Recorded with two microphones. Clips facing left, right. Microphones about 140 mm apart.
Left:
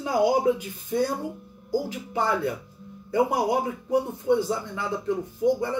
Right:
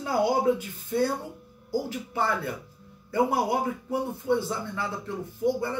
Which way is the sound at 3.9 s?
15° left (ahead or behind).